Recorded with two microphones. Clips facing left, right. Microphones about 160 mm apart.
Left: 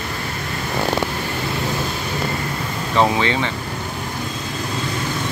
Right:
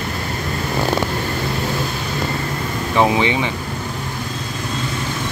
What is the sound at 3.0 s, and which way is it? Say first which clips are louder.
Speech: right 1 dB; 15° right (ahead or behind).